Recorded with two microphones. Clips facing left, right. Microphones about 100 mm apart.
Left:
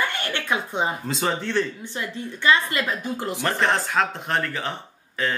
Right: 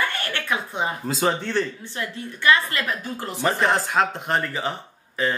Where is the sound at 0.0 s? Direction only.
20° left (ahead or behind).